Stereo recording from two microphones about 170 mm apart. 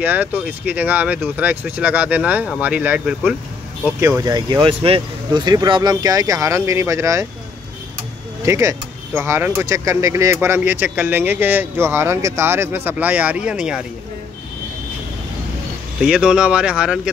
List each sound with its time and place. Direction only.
0.0 s speech: 10° right (ahead or behind)
8.5 s speech: 15° right (ahead or behind)
16.0 s speech: 5° right (ahead or behind)